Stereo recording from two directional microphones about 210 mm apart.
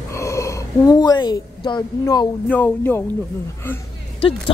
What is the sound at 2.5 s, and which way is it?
Speech, 10° left (ahead or behind).